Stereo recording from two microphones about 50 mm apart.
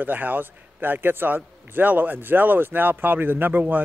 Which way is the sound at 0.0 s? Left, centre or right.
Right.